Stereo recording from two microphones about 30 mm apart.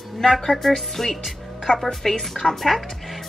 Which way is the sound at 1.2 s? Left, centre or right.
Centre.